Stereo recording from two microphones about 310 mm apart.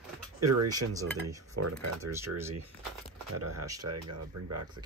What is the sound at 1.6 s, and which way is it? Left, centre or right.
Speech, right.